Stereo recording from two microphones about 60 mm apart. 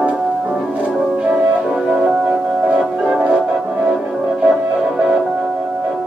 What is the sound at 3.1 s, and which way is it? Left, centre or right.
Music, centre.